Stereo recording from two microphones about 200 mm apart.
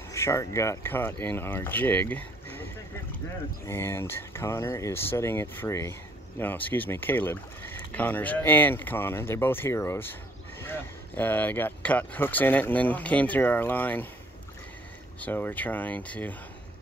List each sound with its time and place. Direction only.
0.1 s speech: 15° left (ahead or behind)
15.1 s speech: 10° left (ahead or behind)